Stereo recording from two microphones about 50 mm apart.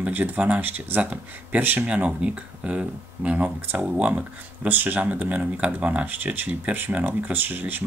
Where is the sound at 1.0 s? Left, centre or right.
Right.